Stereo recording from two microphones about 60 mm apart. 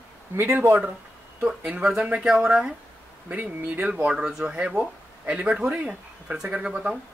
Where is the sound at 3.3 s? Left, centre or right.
Right.